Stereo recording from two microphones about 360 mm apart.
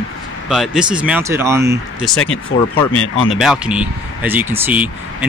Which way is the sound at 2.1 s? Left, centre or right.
Left.